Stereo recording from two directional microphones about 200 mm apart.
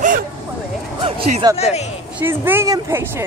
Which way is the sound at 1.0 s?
25° right (ahead or behind).